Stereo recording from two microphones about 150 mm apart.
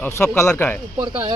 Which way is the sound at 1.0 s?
30° right (ahead or behind).